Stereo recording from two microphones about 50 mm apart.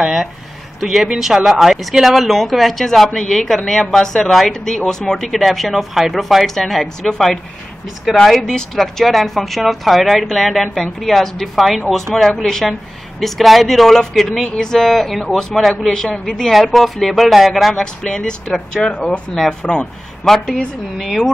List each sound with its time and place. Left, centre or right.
0.0 s speech: centre
8.4 s speech: centre
17.7 s speech: centre
19.3 s speech: centre